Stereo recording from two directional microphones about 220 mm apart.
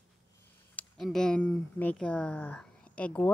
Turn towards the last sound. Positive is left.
turn(degrees=5)  # may be behind; listen again after turning